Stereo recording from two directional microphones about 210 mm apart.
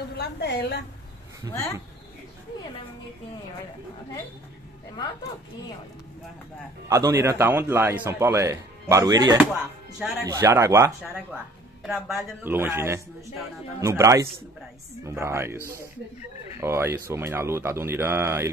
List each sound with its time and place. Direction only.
0.2 s a woman's voice: 50° left (ahead or behind)
6.9 s a man's voice: 15° right (ahead or behind)
11.8 s a man's voice: centre (ahead or behind)